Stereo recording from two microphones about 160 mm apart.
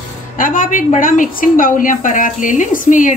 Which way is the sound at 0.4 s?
60° left (ahead or behind).